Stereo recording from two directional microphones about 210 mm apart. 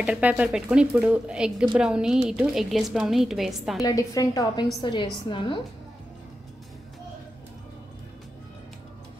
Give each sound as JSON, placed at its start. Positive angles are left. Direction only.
{"t": 0.0, "sound": "a woman's voice", "side_deg": -5}
{"t": 3.8, "sound": "a woman's voice", "side_deg": 15}